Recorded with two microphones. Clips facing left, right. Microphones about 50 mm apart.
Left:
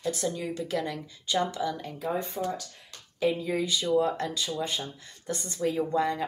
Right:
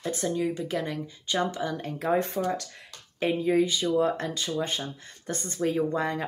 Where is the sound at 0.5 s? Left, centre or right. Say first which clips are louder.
Right 1 dB; centre.